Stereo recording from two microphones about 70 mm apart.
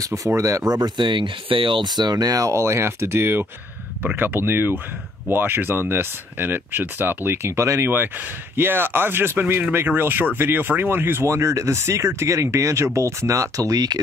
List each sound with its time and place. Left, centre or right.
0.0 s speech: right
1.0 s speech: right
2.5 s speech: right
8.5 s speech: right